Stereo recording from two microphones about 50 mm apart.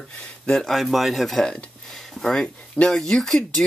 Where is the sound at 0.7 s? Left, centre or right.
Centre.